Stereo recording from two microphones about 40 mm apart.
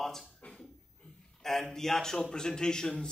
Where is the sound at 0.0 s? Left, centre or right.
Centre.